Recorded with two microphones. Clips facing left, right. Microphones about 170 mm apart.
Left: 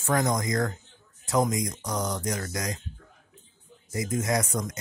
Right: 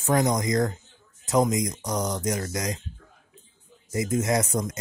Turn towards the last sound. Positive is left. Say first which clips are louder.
# right 3 dB
turn(degrees=-25)  # may be behind; listen again after turning